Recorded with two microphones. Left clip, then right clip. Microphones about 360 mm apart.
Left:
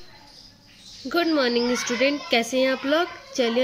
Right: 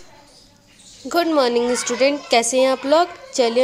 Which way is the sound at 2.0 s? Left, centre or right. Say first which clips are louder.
Right 6 dB; centre.